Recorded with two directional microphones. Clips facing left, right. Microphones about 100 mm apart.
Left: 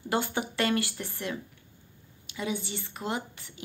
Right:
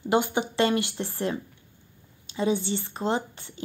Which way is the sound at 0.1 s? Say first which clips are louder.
Right 5 dB; 20° right (ahead or behind).